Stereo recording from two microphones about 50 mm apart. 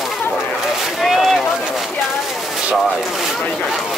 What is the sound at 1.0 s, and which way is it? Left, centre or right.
Speech, centre.